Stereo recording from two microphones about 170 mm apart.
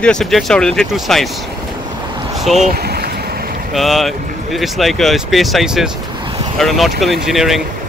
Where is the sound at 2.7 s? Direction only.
65° right (ahead or behind).